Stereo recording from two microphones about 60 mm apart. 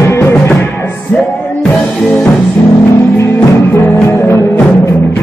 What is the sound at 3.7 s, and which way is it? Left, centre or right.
Music, left.